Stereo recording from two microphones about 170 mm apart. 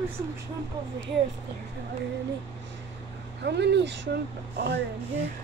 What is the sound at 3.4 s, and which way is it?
Speech, 90° right.